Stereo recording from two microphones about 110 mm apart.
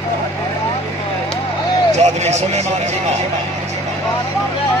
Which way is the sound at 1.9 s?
90° right.